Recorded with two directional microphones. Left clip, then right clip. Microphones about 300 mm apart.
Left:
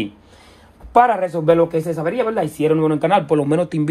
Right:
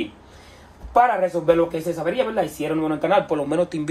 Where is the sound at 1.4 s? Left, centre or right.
Left.